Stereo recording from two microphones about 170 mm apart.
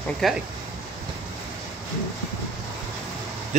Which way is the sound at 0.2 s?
Centre (ahead or behind).